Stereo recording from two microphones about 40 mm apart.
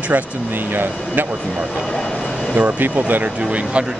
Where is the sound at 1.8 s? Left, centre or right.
Centre.